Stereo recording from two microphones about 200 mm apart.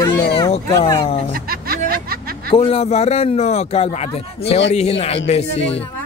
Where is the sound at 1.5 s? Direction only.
50° right (ahead or behind).